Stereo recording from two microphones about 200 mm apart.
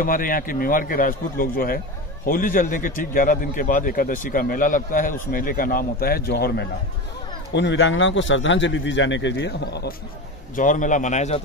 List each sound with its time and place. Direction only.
0.0 s a man's voice: 45° left (ahead or behind)
10.5 s a man's voice: 40° left (ahead or behind)